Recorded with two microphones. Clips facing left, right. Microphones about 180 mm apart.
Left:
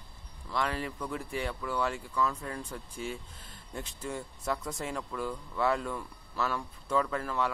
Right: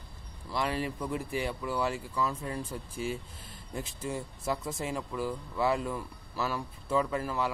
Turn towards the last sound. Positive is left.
turn(degrees=-10)  # may be behind; listen again after turning